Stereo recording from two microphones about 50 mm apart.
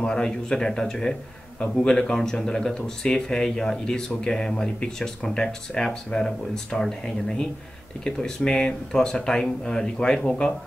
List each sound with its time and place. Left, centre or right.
0.0 s speech: centre